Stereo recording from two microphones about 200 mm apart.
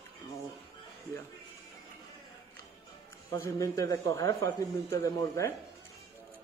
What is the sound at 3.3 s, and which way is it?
Speech, 15° left (ahead or behind).